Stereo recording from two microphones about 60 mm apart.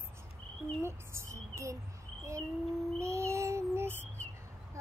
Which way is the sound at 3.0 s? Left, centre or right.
Right.